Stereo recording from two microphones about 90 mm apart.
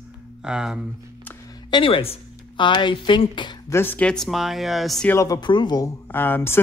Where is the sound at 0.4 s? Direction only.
10° right (ahead or behind).